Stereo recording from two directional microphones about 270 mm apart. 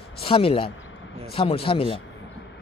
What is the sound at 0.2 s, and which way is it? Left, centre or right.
A man's voice, centre.